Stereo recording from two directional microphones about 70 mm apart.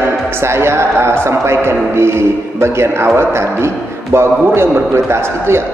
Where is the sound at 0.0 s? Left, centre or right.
Right.